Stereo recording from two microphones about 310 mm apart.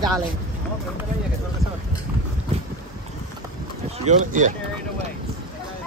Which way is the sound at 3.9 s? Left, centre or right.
Right.